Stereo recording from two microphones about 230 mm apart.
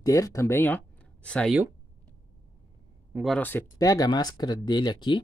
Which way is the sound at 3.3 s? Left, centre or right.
Centre.